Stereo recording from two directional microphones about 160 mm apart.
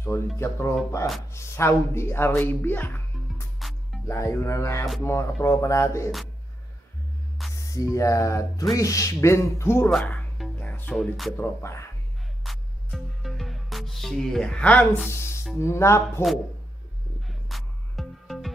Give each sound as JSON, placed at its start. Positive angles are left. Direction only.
{"t": 0.4, "sound": "rapping", "side_deg": 15}
{"t": 1.3, "sound": "speech", "side_deg": 15}
{"t": 3.5, "sound": "music", "side_deg": 0}
{"t": 4.1, "sound": "rapping", "side_deg": 15}
{"t": 5.0, "sound": "speech", "side_deg": 20}
{"t": 7.4, "sound": "music", "side_deg": 0}
{"t": 7.7, "sound": "speech", "side_deg": 20}
{"t": 8.7, "sound": "rapping", "side_deg": 20}
{"t": 9.8, "sound": "speech", "side_deg": 5}
{"t": 11.3, "sound": "rapping", "side_deg": 15}
{"t": 12.4, "sound": "music", "side_deg": 0}
{"t": 15.0, "sound": "a sound", "side_deg": 15}
{"t": 15.5, "sound": "rapping", "side_deg": 15}
{"t": 17.3, "sound": "music", "side_deg": 0}